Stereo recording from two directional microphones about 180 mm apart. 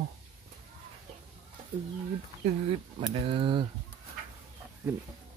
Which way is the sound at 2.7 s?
30° right (ahead or behind).